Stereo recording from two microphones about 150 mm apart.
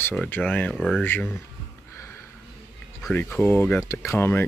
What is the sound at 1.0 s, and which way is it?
Speech, 15° left (ahead or behind).